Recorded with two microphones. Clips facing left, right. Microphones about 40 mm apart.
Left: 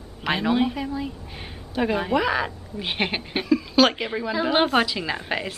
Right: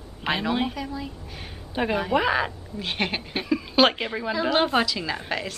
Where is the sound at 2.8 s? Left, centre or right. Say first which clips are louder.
Left 2 dB; centre.